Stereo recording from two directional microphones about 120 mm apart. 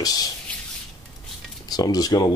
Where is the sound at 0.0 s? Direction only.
30° left (ahead or behind).